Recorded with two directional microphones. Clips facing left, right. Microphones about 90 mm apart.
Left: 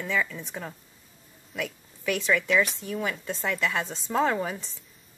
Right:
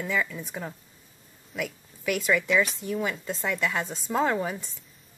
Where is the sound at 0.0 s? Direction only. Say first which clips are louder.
Even; 5° right (ahead or behind).